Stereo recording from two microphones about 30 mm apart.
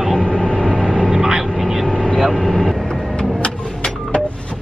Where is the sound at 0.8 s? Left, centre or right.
Centre.